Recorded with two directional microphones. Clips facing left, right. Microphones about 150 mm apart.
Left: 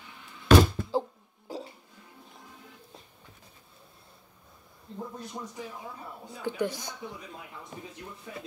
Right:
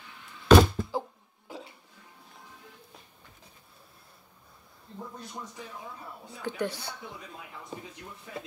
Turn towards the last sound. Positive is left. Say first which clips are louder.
# left 2 dB
turn(degrees=15)  # may be behind; listen again after turning